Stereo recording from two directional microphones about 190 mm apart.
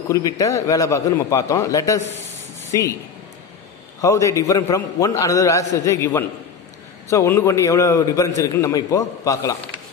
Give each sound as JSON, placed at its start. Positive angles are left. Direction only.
{"t": 0.1, "sound": "a man's voice", "side_deg": 15}
{"t": 4.0, "sound": "a man's voice", "side_deg": 15}